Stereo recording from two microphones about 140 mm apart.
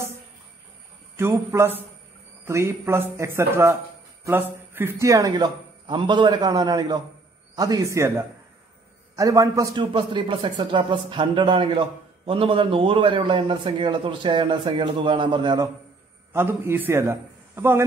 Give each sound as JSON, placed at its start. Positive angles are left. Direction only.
{"t": 1.5, "sound": "a man's voice", "side_deg": -20}
{"t": 9.8, "sound": "a man's voice", "side_deg": -35}
{"t": 16.3, "sound": "a man's voice", "side_deg": -15}